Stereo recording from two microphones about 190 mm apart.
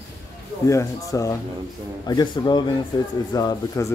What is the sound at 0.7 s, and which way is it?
A man's voice, 15° left (ahead or behind).